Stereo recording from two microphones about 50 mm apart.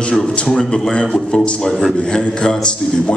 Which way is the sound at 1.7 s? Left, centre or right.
Centre.